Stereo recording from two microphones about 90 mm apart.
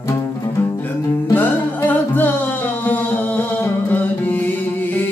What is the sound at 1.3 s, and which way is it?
Music, 20° left (ahead or behind).